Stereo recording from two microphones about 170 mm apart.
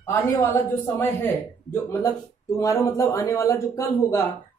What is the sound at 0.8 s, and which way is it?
Speech, 15° left (ahead or behind).